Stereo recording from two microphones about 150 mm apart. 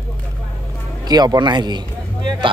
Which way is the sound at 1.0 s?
25° right (ahead or behind).